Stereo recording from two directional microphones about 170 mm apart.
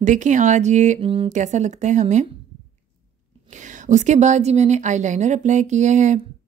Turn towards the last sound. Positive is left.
turn(degrees=-45)  # may be behind; listen again after turning